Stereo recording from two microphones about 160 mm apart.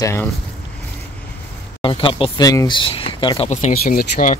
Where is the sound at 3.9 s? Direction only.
60° left (ahead or behind).